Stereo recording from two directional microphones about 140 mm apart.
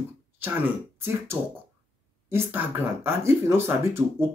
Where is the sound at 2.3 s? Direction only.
15° right (ahead or behind).